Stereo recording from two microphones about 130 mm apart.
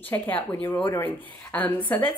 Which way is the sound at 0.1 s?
15° left (ahead or behind).